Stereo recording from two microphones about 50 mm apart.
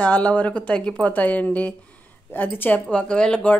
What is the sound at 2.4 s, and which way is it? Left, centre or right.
Speech, left.